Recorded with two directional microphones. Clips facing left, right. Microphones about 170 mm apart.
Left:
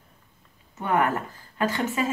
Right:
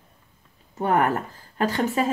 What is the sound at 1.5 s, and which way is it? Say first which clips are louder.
Speech: right 3 dB; 35° right (ahead or behind).